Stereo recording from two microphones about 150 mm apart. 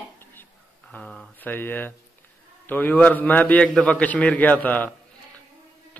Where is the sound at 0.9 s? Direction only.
5° left (ahead or behind).